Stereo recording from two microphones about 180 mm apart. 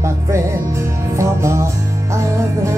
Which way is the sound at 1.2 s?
15° right (ahead or behind).